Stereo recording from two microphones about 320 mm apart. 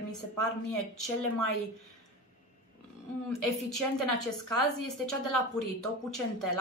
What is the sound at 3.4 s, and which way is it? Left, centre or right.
Speech, left.